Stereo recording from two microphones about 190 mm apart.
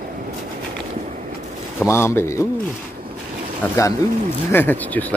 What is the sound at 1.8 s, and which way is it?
Speech, 15° left (ahead or behind).